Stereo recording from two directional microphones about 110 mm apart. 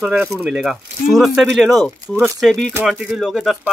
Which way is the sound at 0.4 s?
5° right (ahead or behind).